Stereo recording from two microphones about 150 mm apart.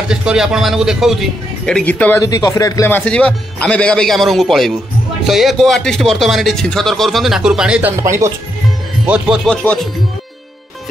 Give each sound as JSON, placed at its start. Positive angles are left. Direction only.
{"t": 0.1, "sound": "speech", "side_deg": -5}
{"t": 1.7, "sound": "speech", "side_deg": 10}
{"t": 2.1, "sound": "speech", "side_deg": 25}
{"t": 8.0, "sound": "speech", "side_deg": -20}
{"t": 9.0, "sound": "speech", "side_deg": -5}
{"t": 9.5, "sound": "speech", "side_deg": 5}